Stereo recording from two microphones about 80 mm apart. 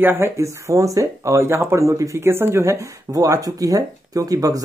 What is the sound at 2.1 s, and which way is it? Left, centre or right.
Speech, right.